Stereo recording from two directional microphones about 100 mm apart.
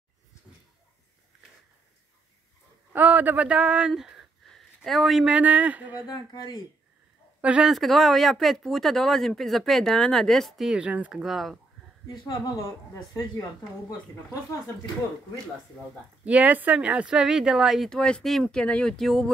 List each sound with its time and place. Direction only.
2.9 s speech: 15° right (ahead or behind)
5.3 s speech: 15° right (ahead or behind)
6.0 s speech: 45° left (ahead or behind)
7.4 s speech: 10° right (ahead or behind)
7.7 s speech: centre (ahead or behind)
10.8 s speech: 15° right (ahead or behind)
11.2 s speech: centre (ahead or behind)
13.1 s a woman's voice: 35° left (ahead or behind)
16.3 s speech: 15° right (ahead or behind); by 19.3 s 5° left (ahead or behind)